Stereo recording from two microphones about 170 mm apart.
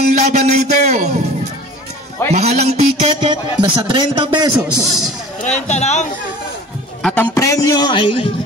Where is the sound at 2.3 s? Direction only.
40° right (ahead or behind).